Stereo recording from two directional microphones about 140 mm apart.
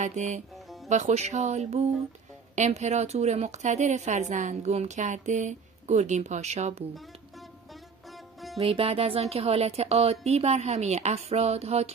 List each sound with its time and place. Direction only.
0.0 s a woman's voice: 55° right (ahead or behind)
8.5 s speech: 45° right (ahead or behind)